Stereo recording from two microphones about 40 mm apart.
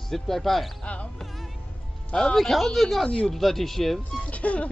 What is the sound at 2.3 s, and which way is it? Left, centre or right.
Speech, centre.